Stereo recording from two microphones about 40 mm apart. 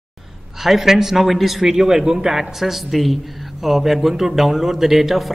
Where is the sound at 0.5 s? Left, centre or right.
Centre.